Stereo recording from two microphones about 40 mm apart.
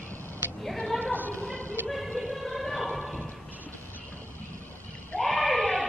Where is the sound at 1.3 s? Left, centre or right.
Left.